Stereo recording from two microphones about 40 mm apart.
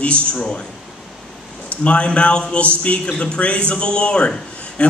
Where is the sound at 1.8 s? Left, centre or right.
Left.